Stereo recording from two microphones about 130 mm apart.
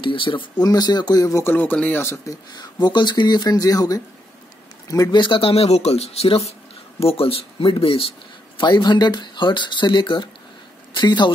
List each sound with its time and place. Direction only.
0.0 s speech: 40° left (ahead or behind); by 2.3 s 20° left (ahead or behind)
2.6 s speech: 35° left (ahead or behind)